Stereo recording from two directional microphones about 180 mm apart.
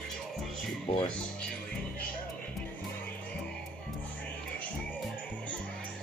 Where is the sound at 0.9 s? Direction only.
30° left (ahead or behind).